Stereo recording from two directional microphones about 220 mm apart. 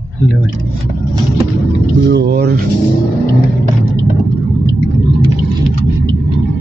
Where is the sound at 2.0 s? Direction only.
50° right (ahead or behind).